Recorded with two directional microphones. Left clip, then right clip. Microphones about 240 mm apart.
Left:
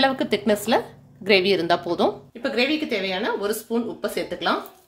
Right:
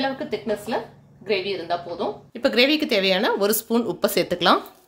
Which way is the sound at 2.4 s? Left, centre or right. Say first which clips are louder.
Right 4 dB; right.